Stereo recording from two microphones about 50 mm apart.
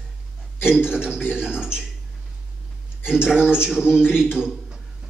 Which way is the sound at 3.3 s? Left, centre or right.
Centre.